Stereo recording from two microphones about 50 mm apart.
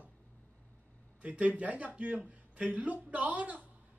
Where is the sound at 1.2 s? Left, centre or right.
Right.